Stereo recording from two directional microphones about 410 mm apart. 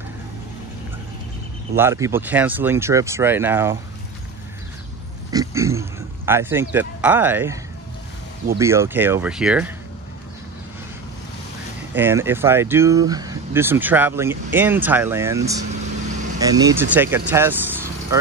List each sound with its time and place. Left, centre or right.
1.8 s speech: centre
5.3 s speech: centre
8.5 s speech: centre
11.9 s speech: centre